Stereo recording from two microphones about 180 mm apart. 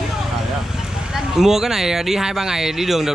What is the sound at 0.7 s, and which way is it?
Speech, centre (ahead or behind).